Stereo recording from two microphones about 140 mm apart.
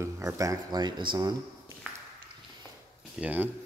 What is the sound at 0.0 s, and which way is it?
Speech, 25° right (ahead or behind).